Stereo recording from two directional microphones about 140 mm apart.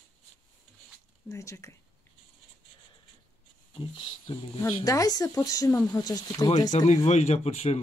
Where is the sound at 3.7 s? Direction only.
35° left (ahead or behind).